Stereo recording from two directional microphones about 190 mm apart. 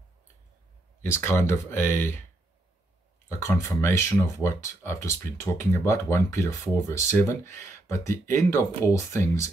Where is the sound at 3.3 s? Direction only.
15° left (ahead or behind).